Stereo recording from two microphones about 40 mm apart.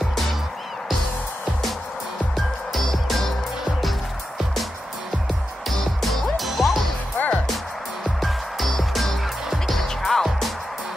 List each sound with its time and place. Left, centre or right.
2.3 s music: centre
6.0 s music: centre
7.2 s music: left
8.2 s music: centre